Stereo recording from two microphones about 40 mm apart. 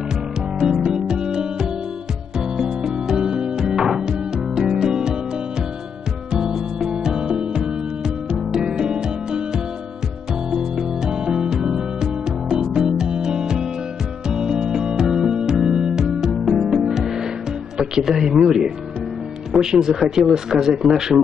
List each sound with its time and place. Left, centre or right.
0.6 s music: centre
0.8 s music: right
6.3 s music: centre
17.7 s a sound: centre
19.5 s speech: centre
19.9 s a man's voice: centre